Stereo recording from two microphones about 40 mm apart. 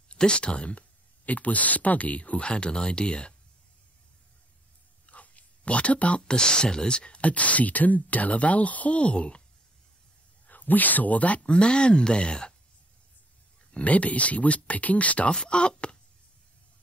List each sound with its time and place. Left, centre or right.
0.1 s speech: left
5.0 s a sound: left
6.2 s speech: left
10.4 s speech: left
11.4 s speech: left
13.7 s speech: left
15.4 s speech: left